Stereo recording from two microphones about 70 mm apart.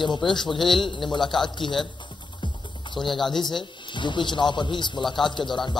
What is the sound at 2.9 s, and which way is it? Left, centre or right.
Speech, centre.